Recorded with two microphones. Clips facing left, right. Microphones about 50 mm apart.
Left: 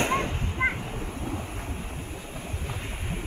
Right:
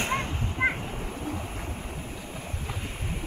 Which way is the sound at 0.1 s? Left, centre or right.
Centre.